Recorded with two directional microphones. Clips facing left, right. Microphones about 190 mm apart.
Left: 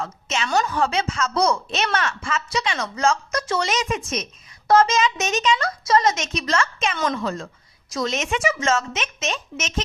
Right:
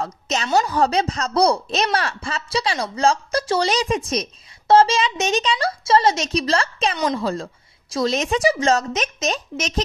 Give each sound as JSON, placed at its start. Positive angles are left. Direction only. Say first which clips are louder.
{"t": 0.0, "sound": "a woman's voice", "louder": "right 2 dB", "side_deg": -40}
{"t": 7.0, "sound": "speech", "louder": "right 1 dB", "side_deg": -20}
{"t": 7.9, "sound": "speech", "louder": "right 4 dB", "side_deg": -35}